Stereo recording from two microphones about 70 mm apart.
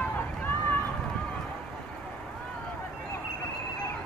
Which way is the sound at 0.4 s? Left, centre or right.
Left.